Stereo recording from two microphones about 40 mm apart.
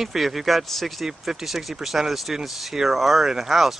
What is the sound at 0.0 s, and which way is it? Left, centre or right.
Speech, centre.